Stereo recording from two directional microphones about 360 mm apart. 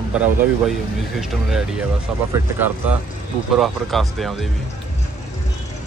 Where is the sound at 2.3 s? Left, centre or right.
Centre.